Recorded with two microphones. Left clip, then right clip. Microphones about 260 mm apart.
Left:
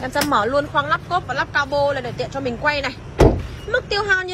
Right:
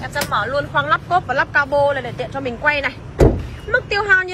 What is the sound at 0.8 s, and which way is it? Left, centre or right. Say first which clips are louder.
A woman's voice: right 4 dB; centre.